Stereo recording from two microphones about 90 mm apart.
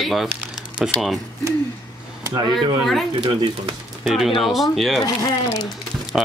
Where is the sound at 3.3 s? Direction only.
65° right (ahead or behind).